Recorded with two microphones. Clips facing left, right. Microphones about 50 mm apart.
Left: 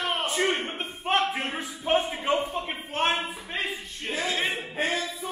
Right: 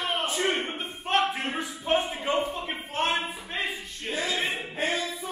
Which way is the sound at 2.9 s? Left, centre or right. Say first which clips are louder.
Left 2 dB; left.